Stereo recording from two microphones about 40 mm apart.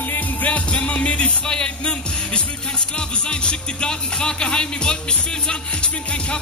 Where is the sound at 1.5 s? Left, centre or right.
Left.